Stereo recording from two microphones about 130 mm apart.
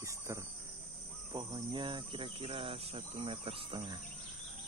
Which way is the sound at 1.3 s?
35° right (ahead or behind).